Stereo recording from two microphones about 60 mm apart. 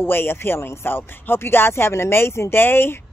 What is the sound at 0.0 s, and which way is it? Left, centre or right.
Speech, left.